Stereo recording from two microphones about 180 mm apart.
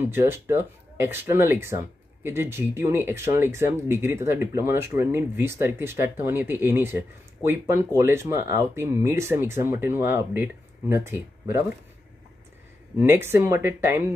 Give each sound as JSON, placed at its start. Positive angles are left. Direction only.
{"t": 0.0, "sound": "speech", "side_deg": -10}
{"t": 12.9, "sound": "speech", "side_deg": -15}